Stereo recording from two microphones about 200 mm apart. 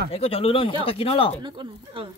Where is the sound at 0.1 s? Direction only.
30° left (ahead or behind).